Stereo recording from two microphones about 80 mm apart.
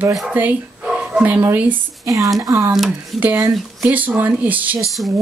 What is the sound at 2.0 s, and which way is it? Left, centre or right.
Speech, right.